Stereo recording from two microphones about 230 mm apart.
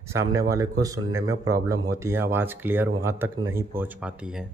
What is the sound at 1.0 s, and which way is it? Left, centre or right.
Speech, right.